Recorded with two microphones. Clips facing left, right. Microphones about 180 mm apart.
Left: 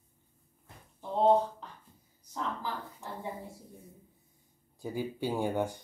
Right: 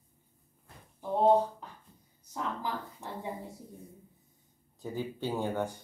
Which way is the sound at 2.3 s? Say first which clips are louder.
Right 1 dB; 15° right (ahead or behind).